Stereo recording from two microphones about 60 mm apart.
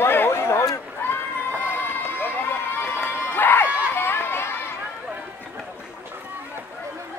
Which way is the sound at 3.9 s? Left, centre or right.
Left.